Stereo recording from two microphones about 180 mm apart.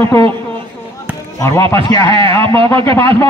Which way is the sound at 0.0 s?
15° left (ahead or behind).